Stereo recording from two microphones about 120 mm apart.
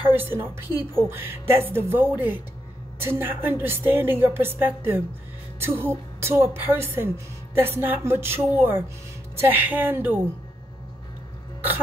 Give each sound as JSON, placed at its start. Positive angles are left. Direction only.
{"t": 0.0, "sound": "a woman's voice", "side_deg": -15}